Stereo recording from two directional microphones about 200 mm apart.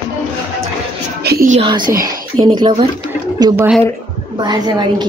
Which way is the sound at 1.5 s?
25° right (ahead or behind).